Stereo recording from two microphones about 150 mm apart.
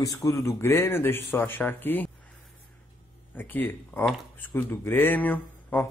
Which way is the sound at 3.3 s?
10° left (ahead or behind).